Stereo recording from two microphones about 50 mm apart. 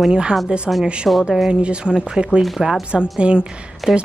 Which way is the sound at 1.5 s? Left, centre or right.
Right.